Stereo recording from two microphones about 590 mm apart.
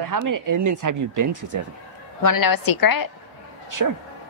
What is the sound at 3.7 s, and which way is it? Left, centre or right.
Speech, right.